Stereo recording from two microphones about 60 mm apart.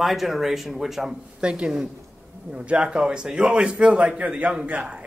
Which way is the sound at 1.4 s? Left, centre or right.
Centre.